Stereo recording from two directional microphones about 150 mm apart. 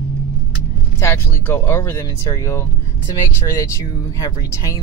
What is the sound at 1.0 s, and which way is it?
Speech, 15° left (ahead or behind).